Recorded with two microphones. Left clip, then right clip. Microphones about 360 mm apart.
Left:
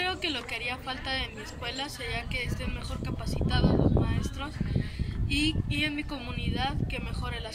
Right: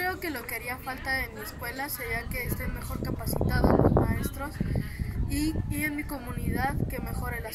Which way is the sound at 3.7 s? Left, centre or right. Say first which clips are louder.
Right 8 dB; right.